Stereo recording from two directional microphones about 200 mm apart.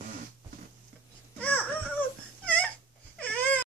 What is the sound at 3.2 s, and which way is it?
Wail, 5° left (ahead or behind).